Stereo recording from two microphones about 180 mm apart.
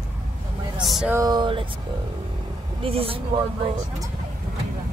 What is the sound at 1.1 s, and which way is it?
Speech, 20° right (ahead or behind).